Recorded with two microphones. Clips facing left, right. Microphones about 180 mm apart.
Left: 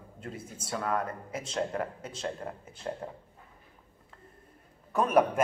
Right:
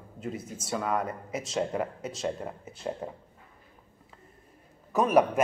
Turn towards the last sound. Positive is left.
turn(degrees=-5)  # may be behind; listen again after turning